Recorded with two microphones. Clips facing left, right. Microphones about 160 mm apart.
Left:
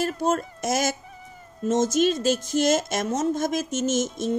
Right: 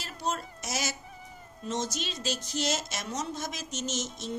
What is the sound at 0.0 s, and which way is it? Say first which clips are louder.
A woman's voice: left 10 dB; 50° left (ahead or behind).